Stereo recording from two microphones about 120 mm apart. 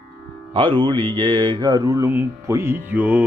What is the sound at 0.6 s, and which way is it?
Mantra, 45° right (ahead or behind).